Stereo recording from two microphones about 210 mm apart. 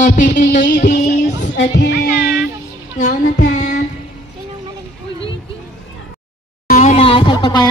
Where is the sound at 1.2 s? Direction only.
55° left (ahead or behind).